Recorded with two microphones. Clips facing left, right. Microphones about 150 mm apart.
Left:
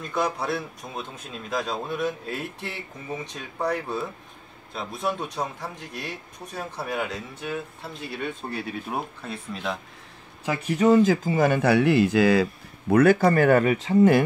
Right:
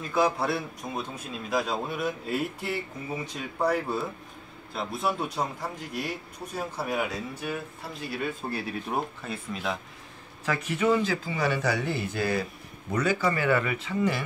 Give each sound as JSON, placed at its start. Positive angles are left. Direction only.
{"t": 0.0, "sound": "a man's voice", "side_deg": -5}
{"t": 10.7, "sound": "speech", "side_deg": 40}
{"t": 12.9, "sound": "speech", "side_deg": 55}